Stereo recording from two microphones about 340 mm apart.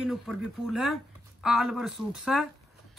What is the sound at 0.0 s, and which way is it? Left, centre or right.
Speech, centre.